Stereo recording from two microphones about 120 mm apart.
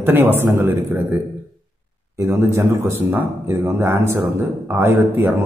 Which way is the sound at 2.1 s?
25° right (ahead or behind).